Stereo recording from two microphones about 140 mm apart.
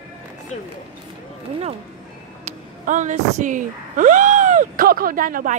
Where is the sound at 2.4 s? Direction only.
60° right (ahead or behind); by 5.5 s 80° right.